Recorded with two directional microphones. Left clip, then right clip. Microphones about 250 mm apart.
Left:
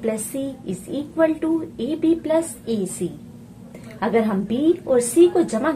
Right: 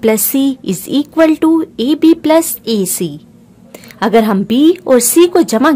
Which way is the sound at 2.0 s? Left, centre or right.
Right.